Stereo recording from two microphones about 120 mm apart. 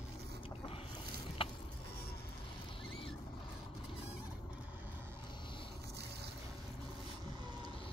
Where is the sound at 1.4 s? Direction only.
50° left (ahead or behind).